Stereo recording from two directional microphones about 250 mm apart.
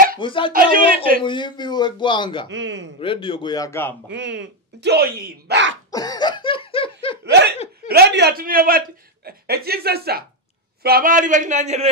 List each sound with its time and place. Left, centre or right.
0.2 s a man's voice: centre
0.5 s speech: right
1.2 s a man's voice: centre
2.5 s speech: right
3.0 s a man's voice: left
4.1 s speech: right
5.9 s laughter: centre
7.2 s laughter: right
7.5 s chuckle: left
7.9 s speech: right